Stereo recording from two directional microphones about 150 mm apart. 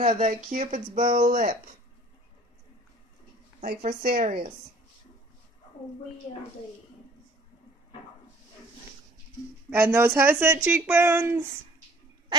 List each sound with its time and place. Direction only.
0.2 s speech: 60° right (ahead or behind)
3.6 s a woman's voice: 80° right
9.7 s speech: 15° right (ahead or behind)